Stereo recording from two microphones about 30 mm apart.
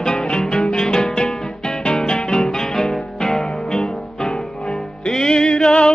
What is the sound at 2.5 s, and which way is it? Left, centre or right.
Music, centre.